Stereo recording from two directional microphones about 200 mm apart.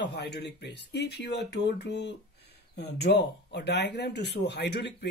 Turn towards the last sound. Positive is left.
turn(degrees=55)  # may be behind; listen again after turning